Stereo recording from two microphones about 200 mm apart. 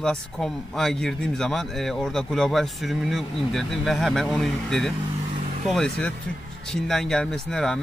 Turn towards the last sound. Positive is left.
turn(degrees=5)  # may be behind; listen again after turning